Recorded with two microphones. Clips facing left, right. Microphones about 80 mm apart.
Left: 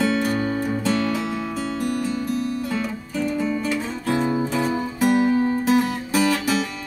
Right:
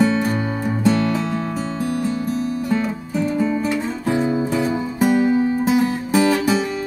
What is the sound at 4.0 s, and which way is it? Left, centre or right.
Music, centre.